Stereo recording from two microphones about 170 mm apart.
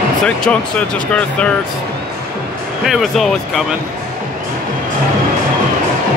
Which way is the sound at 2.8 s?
Centre (ahead or behind).